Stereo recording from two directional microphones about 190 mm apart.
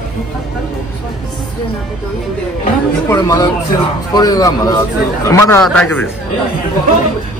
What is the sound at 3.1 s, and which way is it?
A man's voice, 15° left (ahead or behind).